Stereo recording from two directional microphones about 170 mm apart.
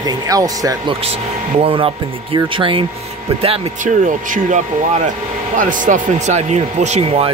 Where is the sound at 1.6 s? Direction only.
30° right (ahead or behind).